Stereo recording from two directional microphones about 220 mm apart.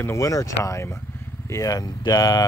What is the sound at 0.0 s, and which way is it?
Speech, 15° left (ahead or behind).